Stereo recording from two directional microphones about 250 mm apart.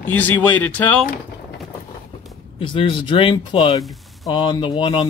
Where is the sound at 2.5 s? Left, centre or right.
Centre.